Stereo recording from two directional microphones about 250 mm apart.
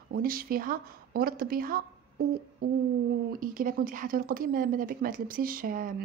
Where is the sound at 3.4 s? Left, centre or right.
Right.